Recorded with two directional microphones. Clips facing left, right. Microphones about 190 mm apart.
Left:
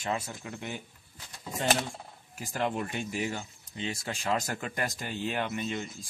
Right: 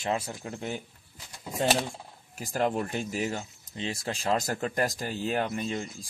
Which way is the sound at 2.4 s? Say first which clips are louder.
Right 3 dB; 40° right (ahead or behind).